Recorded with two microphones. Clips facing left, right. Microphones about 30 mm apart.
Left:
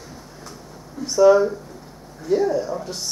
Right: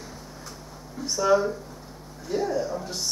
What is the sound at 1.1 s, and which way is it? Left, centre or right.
A man's voice, centre.